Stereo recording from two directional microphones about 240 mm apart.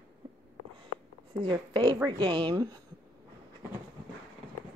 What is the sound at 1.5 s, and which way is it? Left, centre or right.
A woman's voice, centre.